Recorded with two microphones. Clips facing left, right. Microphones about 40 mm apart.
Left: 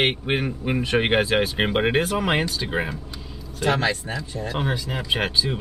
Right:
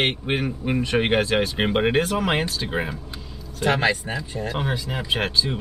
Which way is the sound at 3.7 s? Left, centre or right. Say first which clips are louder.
Right 2 dB; centre.